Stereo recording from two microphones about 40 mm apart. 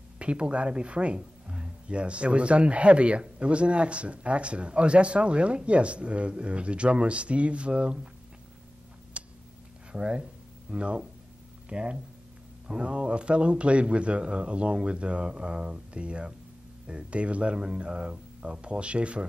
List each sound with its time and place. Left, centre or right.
0.2 s speech: right
9.1 s tick-tock: right
9.9 s speech: right